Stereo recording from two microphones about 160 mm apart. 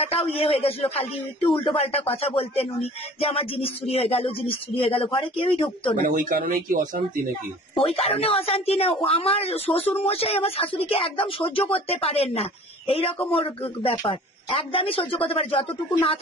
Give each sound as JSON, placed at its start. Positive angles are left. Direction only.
{"t": 0.1, "sound": "a man's voice", "side_deg": 35}
{"t": 6.0, "sound": "speech", "side_deg": -60}
{"t": 7.7, "sound": "a man's voice", "side_deg": 35}